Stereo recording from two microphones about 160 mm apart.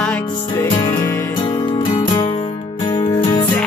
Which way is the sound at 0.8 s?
25° left (ahead or behind).